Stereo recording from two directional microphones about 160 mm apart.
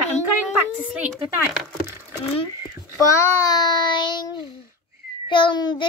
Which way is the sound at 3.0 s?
20° left (ahead or behind).